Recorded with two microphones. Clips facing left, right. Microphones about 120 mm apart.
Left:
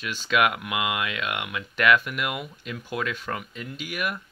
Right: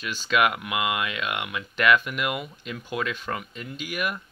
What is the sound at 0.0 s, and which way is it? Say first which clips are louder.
Speech: even; 10° left (ahead or behind).